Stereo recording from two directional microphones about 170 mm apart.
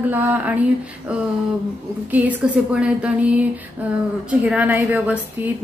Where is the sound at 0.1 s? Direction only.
10° right (ahead or behind).